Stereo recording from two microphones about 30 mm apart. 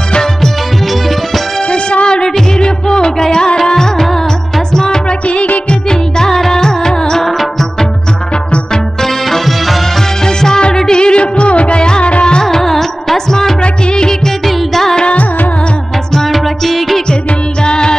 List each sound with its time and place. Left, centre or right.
1.7 s music: left
5.7 s music: left
10.2 s music: left
12.4 s music: centre
13.6 s music: left
14.7 s music: centre
16.3 s music: centre
17.6 s music: left